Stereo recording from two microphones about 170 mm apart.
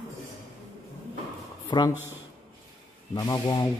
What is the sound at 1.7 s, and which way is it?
Speech, 25° left (ahead or behind).